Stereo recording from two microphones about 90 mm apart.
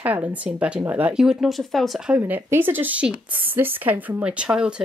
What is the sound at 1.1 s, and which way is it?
Speech, 5° right (ahead or behind).